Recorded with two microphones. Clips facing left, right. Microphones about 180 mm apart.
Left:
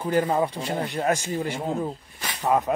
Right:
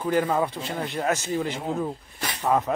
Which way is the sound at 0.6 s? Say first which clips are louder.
Left 3 dB; 45° left (ahead or behind).